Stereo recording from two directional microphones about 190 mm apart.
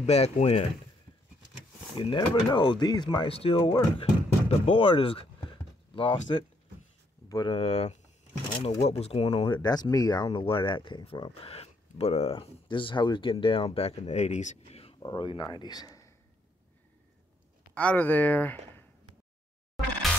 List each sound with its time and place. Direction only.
0.0 s speech: 35° left (ahead or behind)
2.0 s speech: 25° left (ahead or behind)
6.3 s speech: 25° left (ahead or behind)
17.7 s speech: 10° left (ahead or behind)